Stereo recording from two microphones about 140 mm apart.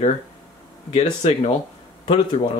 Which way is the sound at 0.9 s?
50° left (ahead or behind).